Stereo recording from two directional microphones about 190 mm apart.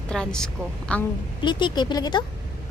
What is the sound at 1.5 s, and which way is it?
Speech, 25° left (ahead or behind).